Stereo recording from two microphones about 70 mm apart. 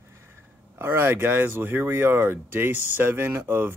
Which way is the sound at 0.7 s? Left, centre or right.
Right.